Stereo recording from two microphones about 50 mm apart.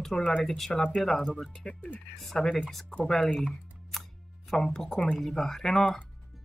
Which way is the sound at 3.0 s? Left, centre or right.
Centre.